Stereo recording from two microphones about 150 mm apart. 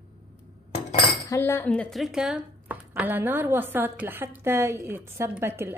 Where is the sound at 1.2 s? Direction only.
20° left (ahead or behind).